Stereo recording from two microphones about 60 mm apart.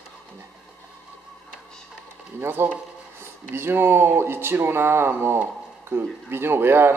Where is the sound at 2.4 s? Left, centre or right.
Right.